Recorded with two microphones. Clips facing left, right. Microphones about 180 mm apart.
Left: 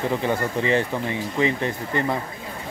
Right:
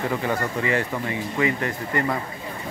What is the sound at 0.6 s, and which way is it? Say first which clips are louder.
Speech: left 3 dB; 25° left (ahead or behind).